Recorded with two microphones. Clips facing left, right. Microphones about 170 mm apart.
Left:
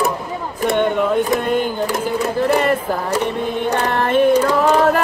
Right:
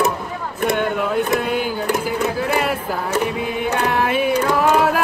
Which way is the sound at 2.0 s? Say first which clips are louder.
Left 3 dB; centre (ahead or behind).